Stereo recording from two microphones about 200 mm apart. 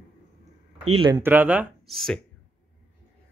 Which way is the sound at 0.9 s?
25° right (ahead or behind).